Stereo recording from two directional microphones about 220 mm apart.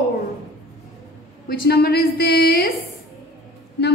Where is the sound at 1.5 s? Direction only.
45° left (ahead or behind).